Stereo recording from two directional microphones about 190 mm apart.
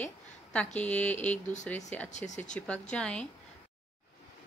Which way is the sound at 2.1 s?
40° left (ahead or behind).